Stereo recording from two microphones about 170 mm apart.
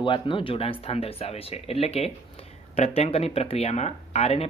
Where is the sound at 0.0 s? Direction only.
30° left (ahead or behind).